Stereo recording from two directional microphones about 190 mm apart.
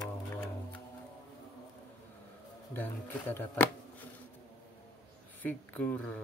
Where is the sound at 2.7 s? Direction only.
10° left (ahead or behind).